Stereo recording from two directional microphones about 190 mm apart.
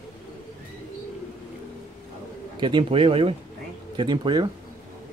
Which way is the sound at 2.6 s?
25° right (ahead or behind).